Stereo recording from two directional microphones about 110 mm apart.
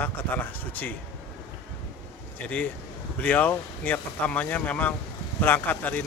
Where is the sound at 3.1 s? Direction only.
15° left (ahead or behind).